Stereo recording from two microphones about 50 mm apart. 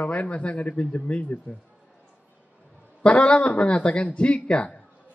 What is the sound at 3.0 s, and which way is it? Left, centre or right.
A man's voice, left.